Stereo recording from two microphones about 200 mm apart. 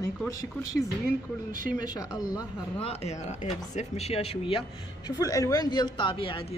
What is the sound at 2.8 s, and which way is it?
Speech, 30° left (ahead or behind).